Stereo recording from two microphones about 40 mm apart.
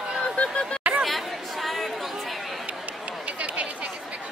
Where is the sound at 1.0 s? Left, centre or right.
Centre.